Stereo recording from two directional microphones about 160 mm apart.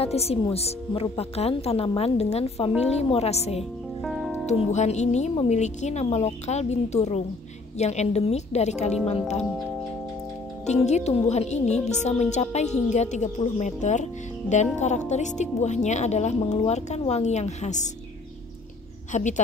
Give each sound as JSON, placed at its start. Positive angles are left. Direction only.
{"t": 0.0, "sound": "a woman's voice", "side_deg": 40}
{"t": 4.0, "sound": "music", "side_deg": 0}
{"t": 4.5, "sound": "speech", "side_deg": 45}
{"t": 10.7, "sound": "speech", "side_deg": 45}
{"t": 19.1, "sound": "speech", "side_deg": 50}